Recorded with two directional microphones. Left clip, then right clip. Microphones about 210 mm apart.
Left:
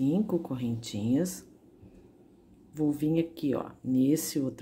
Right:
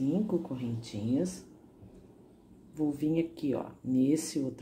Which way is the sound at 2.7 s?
20° left (ahead or behind).